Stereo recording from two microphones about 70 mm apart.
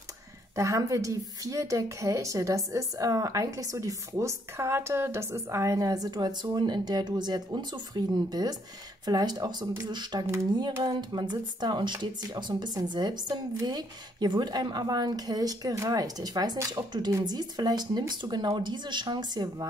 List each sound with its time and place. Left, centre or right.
0.6 s a woman's voice: right
13.6 s speech: right
17.2 s speech: right